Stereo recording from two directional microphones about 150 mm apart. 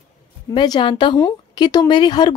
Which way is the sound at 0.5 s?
30° left (ahead or behind).